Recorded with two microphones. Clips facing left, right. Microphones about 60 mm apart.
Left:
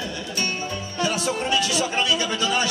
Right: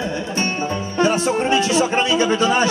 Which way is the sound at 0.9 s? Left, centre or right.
Right.